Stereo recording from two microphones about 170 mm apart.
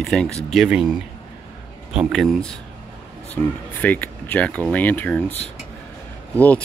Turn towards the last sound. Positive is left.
turn(degrees=10)  # may be behind; listen again after turning